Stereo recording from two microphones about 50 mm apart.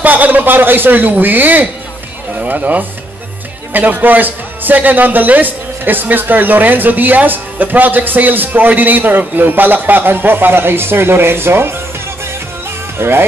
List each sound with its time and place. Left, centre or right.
0.0 s a man's voice: right
13.0 s speech: right